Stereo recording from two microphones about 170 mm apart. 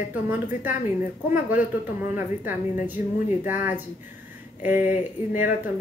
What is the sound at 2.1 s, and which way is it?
A woman's voice, 10° right (ahead or behind).